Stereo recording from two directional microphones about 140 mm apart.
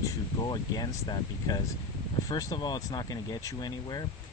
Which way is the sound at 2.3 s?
30° left (ahead or behind).